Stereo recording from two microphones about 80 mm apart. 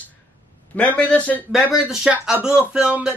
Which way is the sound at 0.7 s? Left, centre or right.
Centre.